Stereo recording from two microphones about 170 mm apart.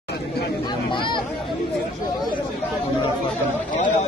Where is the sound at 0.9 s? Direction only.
30° left (ahead or behind).